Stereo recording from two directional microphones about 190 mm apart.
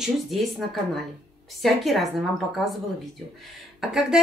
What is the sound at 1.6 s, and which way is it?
A woman's voice, centre (ahead or behind).